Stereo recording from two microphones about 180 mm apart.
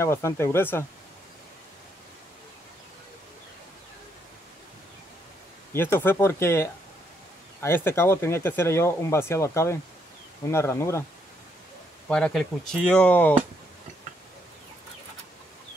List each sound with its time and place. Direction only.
0.0 s speech: 15° left (ahead or behind)
5.7 s speech: 15° left (ahead or behind)
12.1 s speech: 5° left (ahead or behind)